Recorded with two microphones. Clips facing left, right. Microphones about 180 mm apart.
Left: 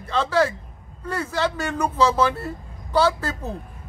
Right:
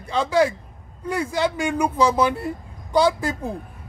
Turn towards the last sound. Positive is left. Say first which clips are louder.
# right 3 dB
turn(degrees=-15)  # may be behind; listen again after turning